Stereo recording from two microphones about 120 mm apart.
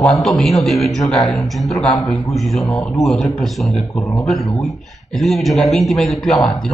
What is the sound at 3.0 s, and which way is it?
Speech, centre (ahead or behind).